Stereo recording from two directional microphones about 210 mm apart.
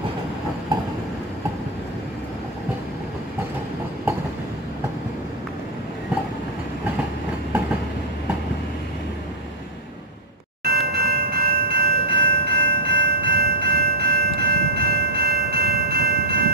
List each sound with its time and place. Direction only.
10.6 s train: 50° right (ahead or behind)